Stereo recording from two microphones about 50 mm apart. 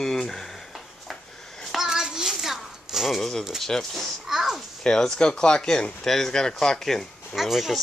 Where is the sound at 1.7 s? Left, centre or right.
Centre.